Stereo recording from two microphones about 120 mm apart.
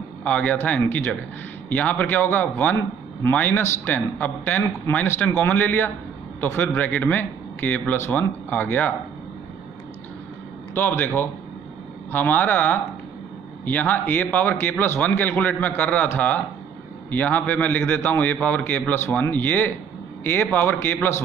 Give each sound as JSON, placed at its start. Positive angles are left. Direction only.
{"t": 0.2, "sound": "a man's voice", "side_deg": 10}
{"t": 10.7, "sound": "a man's voice", "side_deg": 15}